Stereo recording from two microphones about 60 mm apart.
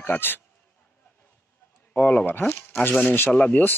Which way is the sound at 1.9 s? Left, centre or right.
Left.